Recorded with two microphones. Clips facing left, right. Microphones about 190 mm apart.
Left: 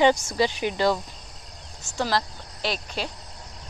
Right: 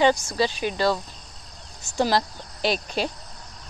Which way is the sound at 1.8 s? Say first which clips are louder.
Right 4 dB; 15° right (ahead or behind).